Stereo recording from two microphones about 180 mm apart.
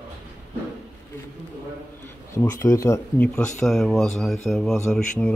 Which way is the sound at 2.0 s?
15° left (ahead or behind).